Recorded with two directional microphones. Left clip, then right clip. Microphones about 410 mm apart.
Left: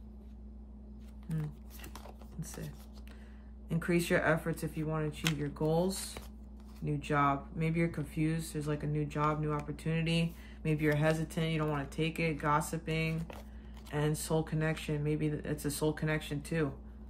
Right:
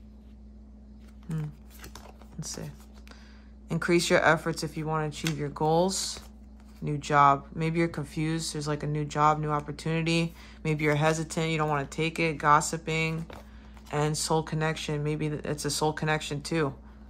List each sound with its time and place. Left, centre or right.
3.6 s speech: centre